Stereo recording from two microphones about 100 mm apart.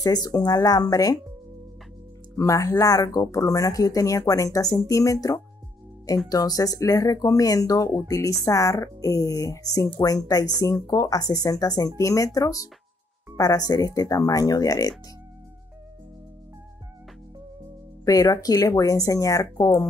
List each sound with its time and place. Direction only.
0.0 s speech: 40° left (ahead or behind)
2.3 s speech: 30° left (ahead or behind)
18.0 s speech: 35° left (ahead or behind)